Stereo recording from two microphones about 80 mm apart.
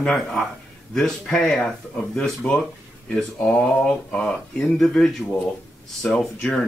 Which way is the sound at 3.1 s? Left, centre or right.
Centre.